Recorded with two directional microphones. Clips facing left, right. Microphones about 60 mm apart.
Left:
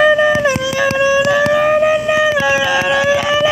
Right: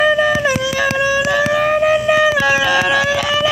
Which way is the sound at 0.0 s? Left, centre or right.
Centre.